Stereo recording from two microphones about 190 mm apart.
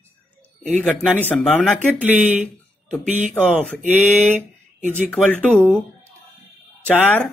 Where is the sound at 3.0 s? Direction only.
40° right (ahead or behind).